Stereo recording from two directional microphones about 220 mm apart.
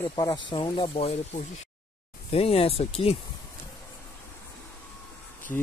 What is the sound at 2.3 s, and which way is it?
Speech, 25° left (ahead or behind).